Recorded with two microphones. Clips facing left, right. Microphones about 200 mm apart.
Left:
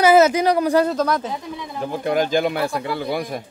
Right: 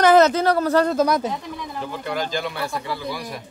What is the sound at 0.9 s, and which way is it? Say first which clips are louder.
Speech: right 2 dB; 10° right (ahead or behind).